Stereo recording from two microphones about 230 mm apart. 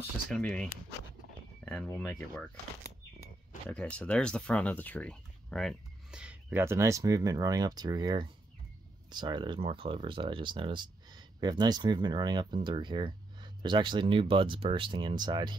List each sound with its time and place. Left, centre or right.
0.3 s speech: centre
3.6 s speech: centre